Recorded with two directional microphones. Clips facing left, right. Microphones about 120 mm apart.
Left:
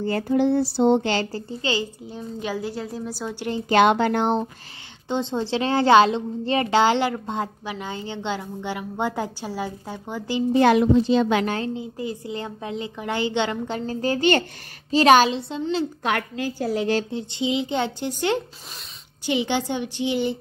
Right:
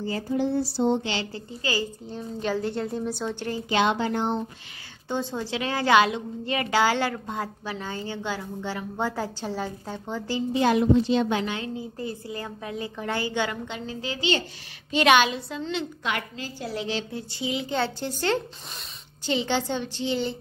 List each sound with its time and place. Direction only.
0.0 s a sound: 65° left (ahead or behind)
1.1 s a woman's voice: 45° left (ahead or behind)
1.5 s a woman's voice: 25° left (ahead or behind)
2.0 s a woman's voice: 10° left (ahead or behind)
3.6 s a woman's voice: 55° left (ahead or behind)
5.0 s a woman's voice: 20° left (ahead or behind)
10.6 s a woman's voice: 85° left
11.4 s a woman's voice: 40° left (ahead or behind)
11.7 s a woman's voice: 20° left (ahead or behind)
13.7 s a woman's voice: 40° left (ahead or behind)
14.9 s a woman's voice: 35° left (ahead or behind)
16.0 s a woman's voice: 50° left (ahead or behind)
17.1 s a woman's voice: 20° left (ahead or behind)